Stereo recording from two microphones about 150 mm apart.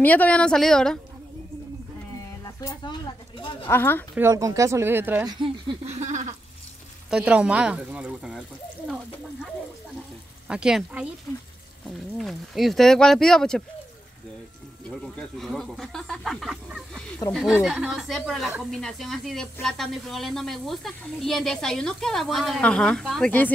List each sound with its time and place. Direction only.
0.0 s speech: 10° left (ahead or behind)
2.4 s a sound: 25° left (ahead or behind)
3.6 s speech: 15° left (ahead or behind)
4.1 s speech: 20° right (ahead or behind)
5.2 s speech: 30° right (ahead or behind)
5.9 s a sound: 50° right (ahead or behind)
7.1 s speech: 10° right (ahead or behind)
10.5 s speech: 5° right (ahead or behind)
11.3 s speech: 10° left (ahead or behind)
12.2 s speech: centre (ahead or behind)
14.9 s speech: 5° left (ahead or behind)